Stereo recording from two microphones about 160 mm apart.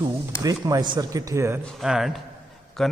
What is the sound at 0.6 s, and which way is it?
Speech, 25° right (ahead or behind).